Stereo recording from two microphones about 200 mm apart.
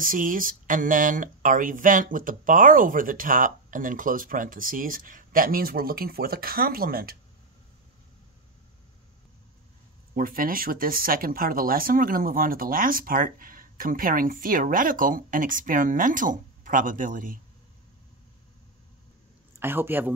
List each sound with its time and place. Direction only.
0.0 s speech: 45° right (ahead or behind)
10.1 s speech: 45° right (ahead or behind)
19.6 s speech: 10° right (ahead or behind)